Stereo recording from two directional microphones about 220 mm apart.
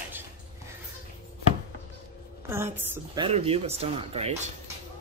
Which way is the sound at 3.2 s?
25° right (ahead or behind).